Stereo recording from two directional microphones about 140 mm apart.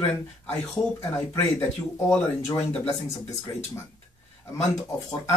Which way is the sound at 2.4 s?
20° left (ahead or behind).